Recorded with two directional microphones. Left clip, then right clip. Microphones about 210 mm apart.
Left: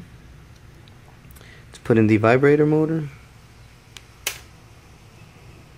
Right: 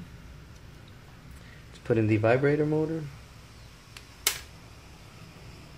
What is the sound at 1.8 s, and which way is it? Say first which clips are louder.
Speech: left 8 dB; 45° left (ahead or behind).